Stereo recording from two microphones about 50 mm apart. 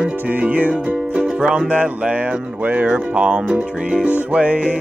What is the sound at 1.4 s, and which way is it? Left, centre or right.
Music, centre.